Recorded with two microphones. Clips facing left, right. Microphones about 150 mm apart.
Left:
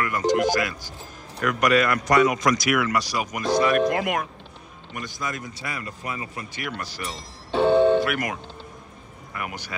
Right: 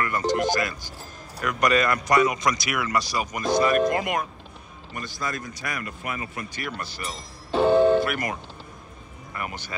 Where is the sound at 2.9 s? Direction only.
10° left (ahead or behind).